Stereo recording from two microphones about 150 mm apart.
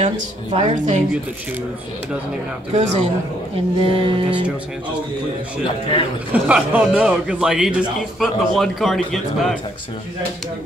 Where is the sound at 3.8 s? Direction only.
35° right (ahead or behind).